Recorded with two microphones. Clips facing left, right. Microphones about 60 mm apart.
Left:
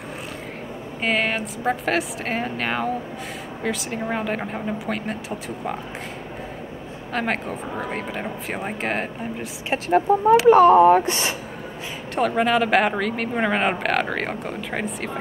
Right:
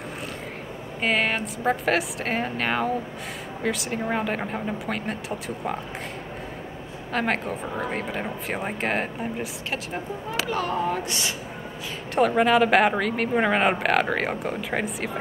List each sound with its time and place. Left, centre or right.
1.0 s speech: centre
7.1 s speech: centre
10.1 s speech: left
10.4 s speech: left
12.2 s speech: centre